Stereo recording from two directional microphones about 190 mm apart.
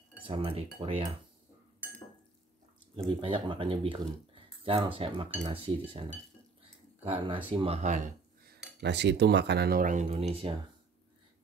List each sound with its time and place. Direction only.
0.2 s speech: 30° right (ahead or behind)
3.1 s speech: 30° right (ahead or behind)
7.1 s speech: 30° right (ahead or behind)
8.5 s cutlery: 65° right (ahead or behind); by 10.5 s 30° right (ahead or behind)